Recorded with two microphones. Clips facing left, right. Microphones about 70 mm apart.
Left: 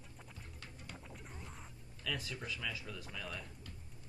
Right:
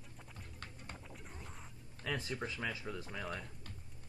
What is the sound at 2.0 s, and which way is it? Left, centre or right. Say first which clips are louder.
Speech: right 2 dB; right.